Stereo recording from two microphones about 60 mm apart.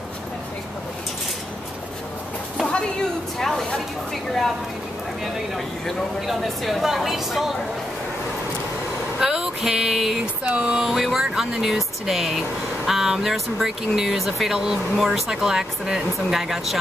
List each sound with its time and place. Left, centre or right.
3.3 s speech: centre
9.2 s a sound: centre
10.4 s speech: centre
10.9 s speech: centre